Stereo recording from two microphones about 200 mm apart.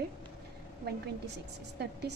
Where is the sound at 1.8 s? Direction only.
55° right (ahead or behind).